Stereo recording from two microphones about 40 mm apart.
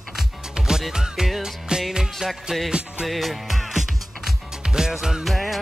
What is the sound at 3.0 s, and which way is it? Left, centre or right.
Music, centre.